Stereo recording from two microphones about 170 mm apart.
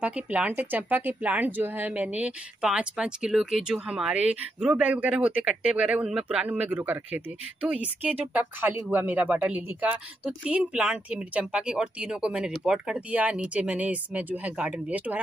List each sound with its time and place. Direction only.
0.0 s speech: 5° right (ahead or behind)